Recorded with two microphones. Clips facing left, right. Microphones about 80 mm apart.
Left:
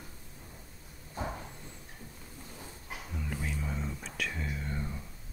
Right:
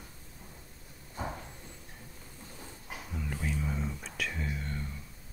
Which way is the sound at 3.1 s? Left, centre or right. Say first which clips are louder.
Right 2 dB; centre.